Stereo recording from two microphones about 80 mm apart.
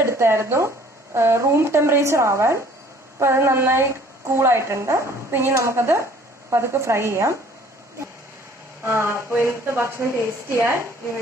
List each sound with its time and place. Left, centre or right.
0.0 s speech: right
8.8 s speech: right